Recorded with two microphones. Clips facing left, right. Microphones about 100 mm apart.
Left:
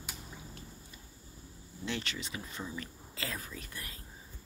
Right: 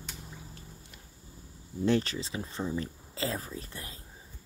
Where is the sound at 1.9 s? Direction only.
35° right (ahead or behind).